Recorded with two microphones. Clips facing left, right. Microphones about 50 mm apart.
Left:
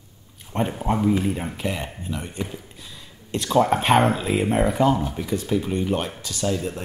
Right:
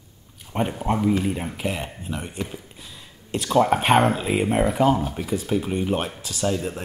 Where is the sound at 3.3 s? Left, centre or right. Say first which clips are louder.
Even; centre.